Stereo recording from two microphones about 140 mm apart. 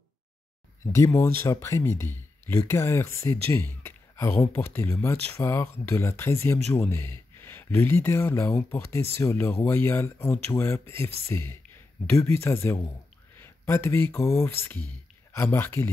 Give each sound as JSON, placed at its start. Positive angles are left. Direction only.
{"t": 0.9, "sound": "speech", "side_deg": 20}